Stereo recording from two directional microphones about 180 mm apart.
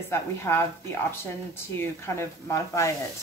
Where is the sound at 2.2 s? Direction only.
15° left (ahead or behind).